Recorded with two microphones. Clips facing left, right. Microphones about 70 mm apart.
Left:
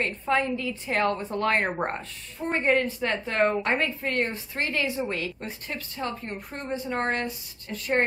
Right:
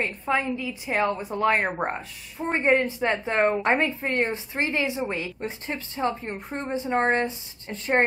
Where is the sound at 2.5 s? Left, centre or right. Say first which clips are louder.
Right 2 dB; right.